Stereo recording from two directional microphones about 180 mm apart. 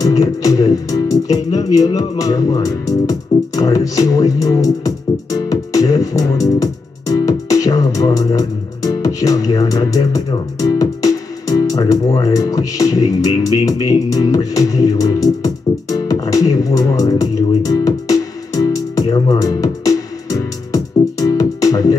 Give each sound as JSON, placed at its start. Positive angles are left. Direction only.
{"t": 0.0, "sound": "music", "side_deg": 20}